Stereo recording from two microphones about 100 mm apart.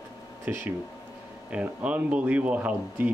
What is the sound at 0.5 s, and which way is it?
Speech, 15° right (ahead or behind).